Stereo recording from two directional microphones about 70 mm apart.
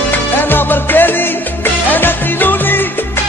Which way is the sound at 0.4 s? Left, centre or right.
Left.